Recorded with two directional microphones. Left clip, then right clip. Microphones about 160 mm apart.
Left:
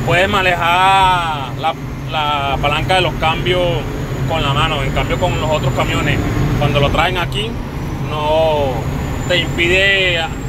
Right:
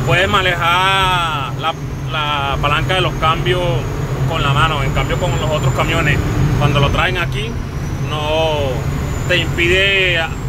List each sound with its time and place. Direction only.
0.1 s speech: 5° right (ahead or behind)
5.8 s speech: 20° right (ahead or behind)
8.3 s vehicle: 20° right (ahead or behind)
9.3 s speech: 15° right (ahead or behind)